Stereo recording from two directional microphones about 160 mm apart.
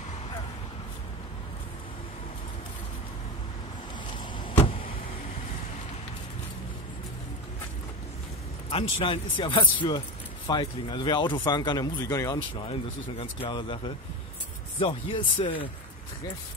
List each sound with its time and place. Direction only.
4.5 s vehicle: 35° left (ahead or behind)
8.6 s speech: 35° left (ahead or behind)